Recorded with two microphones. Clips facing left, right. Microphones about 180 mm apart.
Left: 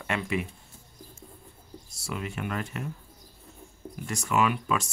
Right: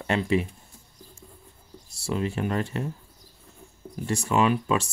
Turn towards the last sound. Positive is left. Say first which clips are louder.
# right 4 dB
turn(degrees=-30)  # may be behind; listen again after turning